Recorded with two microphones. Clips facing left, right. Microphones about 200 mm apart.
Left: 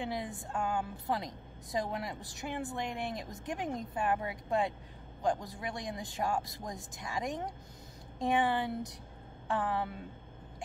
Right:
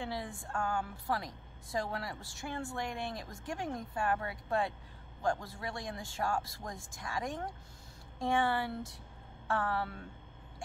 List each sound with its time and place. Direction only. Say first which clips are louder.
0.0 s a woman's voice: left 2 dB; 20° left (ahead or behind)